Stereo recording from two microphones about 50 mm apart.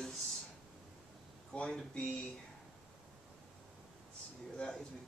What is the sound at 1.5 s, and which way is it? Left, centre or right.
Speech, left.